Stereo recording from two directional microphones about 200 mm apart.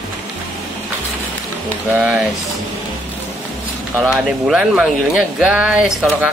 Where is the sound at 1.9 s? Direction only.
5° right (ahead or behind).